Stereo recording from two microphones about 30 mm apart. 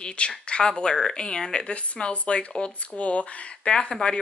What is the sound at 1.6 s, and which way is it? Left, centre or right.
Speech, left.